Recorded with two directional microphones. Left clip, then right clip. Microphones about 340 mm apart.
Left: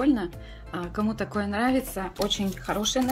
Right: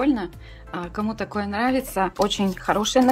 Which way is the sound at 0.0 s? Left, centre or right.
Centre.